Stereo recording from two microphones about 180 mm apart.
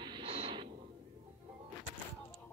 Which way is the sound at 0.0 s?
30° right (ahead or behind).